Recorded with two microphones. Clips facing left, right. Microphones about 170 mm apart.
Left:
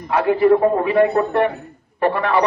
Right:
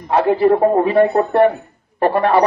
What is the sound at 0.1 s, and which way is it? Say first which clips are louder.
A man's voice: right 1 dB; 35° right (ahead or behind).